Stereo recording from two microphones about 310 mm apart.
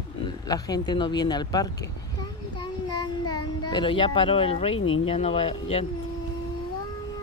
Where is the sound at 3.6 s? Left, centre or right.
Centre.